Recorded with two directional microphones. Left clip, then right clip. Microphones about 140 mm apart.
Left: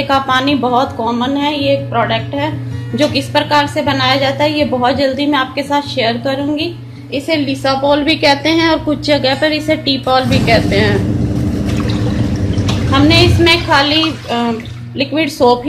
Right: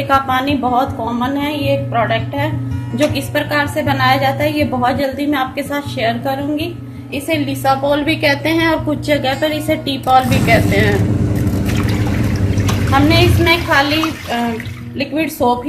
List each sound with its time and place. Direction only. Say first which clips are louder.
0.1 s a woman's voice: left 1 dB; 40° left (ahead or behind)
12.9 s a woman's voice: left 2 dB; 30° left (ahead or behind)